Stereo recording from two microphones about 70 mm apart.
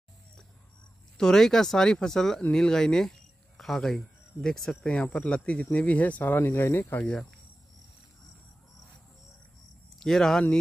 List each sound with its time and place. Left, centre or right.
1.1 s speech: centre; by 7.1 s left
9.9 s speech: centre